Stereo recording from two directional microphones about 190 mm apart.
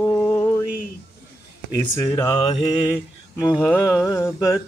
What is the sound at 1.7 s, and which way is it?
Speech, 20° left (ahead or behind).